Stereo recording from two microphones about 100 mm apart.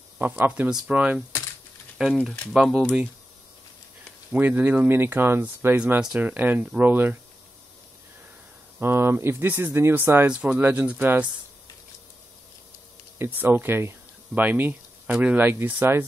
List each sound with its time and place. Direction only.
0.2 s speech: 15° right (ahead or behind)
4.3 s speech: 15° right (ahead or behind)
5.8 s speech: 10° right (ahead or behind)
8.7 s speech: 25° right (ahead or behind)
13.4 s speech: 20° right (ahead or behind)